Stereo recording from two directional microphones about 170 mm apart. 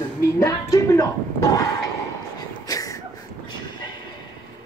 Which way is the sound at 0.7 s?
20° left (ahead or behind).